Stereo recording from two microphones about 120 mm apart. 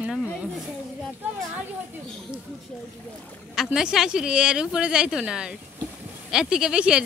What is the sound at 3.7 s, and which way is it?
Speech, 5° right (ahead or behind).